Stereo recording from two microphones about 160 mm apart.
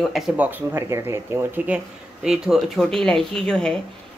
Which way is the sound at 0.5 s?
10° right (ahead or behind).